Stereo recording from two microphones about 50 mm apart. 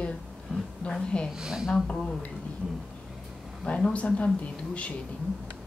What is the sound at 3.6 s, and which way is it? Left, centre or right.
Speech, left.